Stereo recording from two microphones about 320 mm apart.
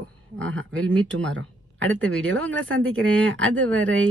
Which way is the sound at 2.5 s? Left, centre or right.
Right.